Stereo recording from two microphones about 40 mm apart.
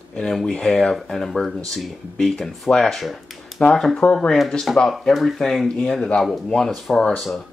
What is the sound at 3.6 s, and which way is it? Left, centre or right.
Speech, centre.